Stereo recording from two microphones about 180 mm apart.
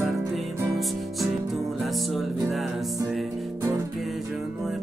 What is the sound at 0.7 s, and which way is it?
Music, centre (ahead or behind).